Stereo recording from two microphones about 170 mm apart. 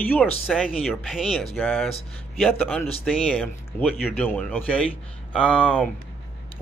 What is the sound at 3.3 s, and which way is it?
A man's voice, 10° left (ahead or behind).